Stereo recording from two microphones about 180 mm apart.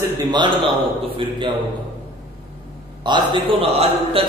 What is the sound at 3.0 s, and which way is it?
A man's voice, 25° right (ahead or behind).